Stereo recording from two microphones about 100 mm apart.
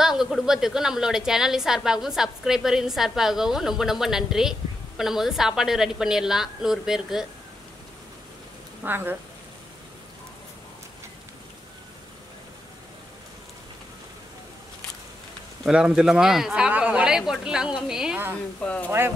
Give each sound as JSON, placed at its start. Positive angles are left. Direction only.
{"t": 0.0, "sound": "a woman's voice", "side_deg": -5}
{"t": 8.8, "sound": "speech", "side_deg": -20}
{"t": 15.6, "sound": "a woman's voice", "side_deg": -10}
{"t": 18.6, "sound": "speech", "side_deg": 15}
{"t": 18.9, "sound": "speech", "side_deg": -20}